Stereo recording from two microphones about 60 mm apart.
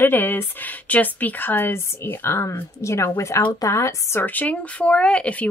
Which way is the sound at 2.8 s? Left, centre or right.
Left.